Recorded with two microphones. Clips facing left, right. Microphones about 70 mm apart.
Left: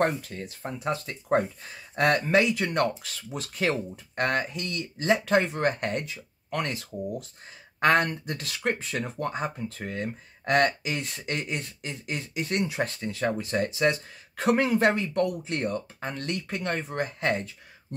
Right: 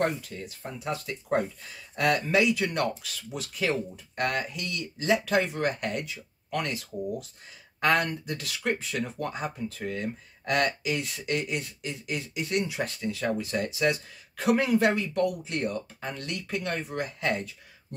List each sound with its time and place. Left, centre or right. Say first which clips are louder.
0.0 s speech: left 2 dB; left